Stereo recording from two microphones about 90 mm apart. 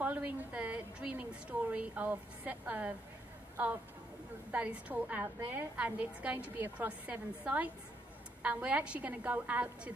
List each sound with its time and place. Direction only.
0.0 s a woman's voice: 15° right (ahead or behind)
4.5 s a woman's voice: 15° right (ahead or behind)